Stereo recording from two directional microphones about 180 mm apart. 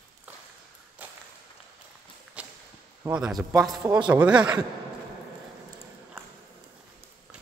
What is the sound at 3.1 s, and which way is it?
A man's voice, 5° right (ahead or behind).